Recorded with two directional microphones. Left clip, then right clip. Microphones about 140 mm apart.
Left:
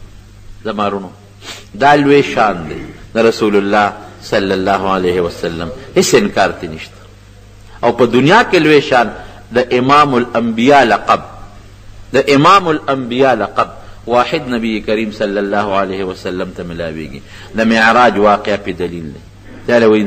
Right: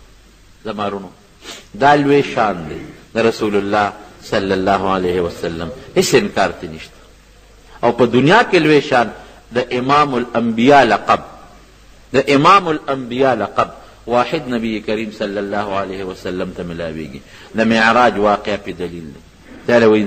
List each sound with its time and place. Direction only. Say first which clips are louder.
0.7 s a man's voice: left 5 dB; 30° left (ahead or behind)